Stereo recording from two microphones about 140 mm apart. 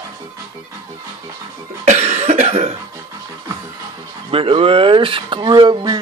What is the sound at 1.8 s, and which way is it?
Cough, 55° right (ahead or behind).